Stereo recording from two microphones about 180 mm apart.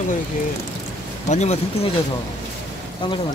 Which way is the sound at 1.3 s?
40° left (ahead or behind).